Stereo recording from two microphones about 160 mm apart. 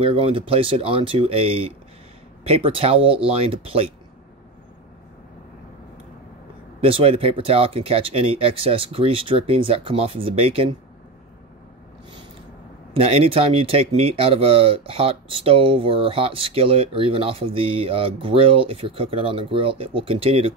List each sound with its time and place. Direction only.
0.0 s speech: 35° right (ahead or behind)
6.8 s speech: 35° right (ahead or behind)
12.9 s speech: 40° right (ahead or behind)